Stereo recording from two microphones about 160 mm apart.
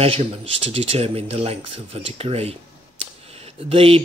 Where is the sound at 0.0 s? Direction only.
40° right (ahead or behind).